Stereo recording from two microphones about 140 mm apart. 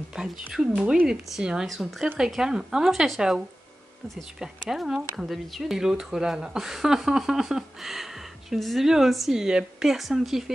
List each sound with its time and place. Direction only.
0.1 s speech: 5° right (ahead or behind)